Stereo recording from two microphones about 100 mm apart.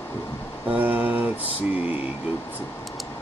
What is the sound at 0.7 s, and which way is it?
Mantra, 15° right (ahead or behind).